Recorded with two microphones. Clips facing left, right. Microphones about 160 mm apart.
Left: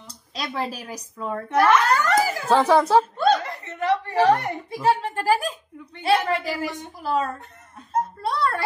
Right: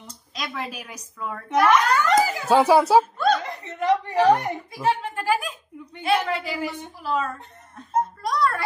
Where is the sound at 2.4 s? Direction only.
10° right (ahead or behind).